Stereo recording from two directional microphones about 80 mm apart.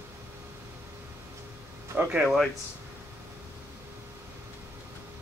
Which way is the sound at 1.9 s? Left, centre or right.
Centre.